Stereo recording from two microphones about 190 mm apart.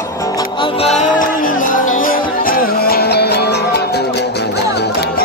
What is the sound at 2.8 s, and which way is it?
Music, 55° left (ahead or behind).